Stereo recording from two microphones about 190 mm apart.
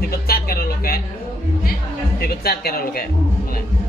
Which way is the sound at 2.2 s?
55° left (ahead or behind).